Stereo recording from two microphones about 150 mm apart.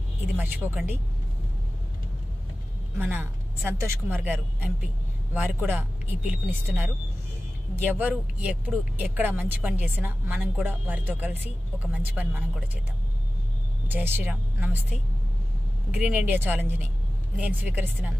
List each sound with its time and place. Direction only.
0.4 s speech: 10° right (ahead or behind)
3.0 s speech: 15° right (ahead or behind)
8.0 s speech: 10° right (ahead or behind)
13.8 s speech: 15° right (ahead or behind)